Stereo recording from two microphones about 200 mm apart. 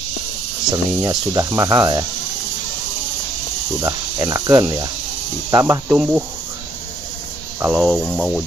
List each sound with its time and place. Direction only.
0.7 s speech: 20° right (ahead or behind)
3.8 s cricket: 15° right (ahead or behind)
7.6 s speech: 5° right (ahead or behind)